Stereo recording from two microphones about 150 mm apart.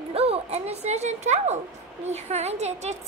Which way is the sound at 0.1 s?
40° right (ahead or behind).